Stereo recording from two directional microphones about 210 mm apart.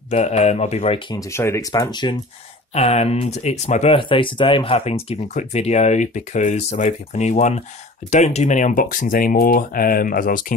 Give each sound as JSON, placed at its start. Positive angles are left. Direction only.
{"t": 0.1, "sound": "speech", "side_deg": 30}
{"t": 2.7, "sound": "speech", "side_deg": 30}